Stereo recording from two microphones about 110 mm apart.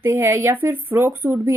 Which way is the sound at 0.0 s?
20° right (ahead or behind).